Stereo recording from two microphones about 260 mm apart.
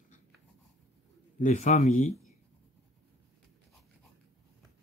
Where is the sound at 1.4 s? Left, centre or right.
Left.